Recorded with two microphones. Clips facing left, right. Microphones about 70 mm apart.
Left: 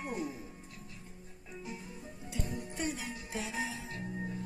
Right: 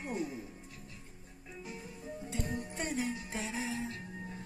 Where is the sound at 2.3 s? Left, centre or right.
Right.